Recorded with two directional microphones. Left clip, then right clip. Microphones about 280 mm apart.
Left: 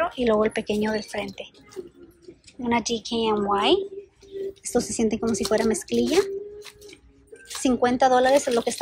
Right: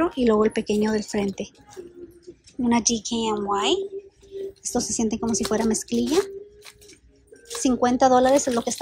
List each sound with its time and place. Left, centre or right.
0.0 s speech: centre
2.6 s speech: centre
7.6 s speech: centre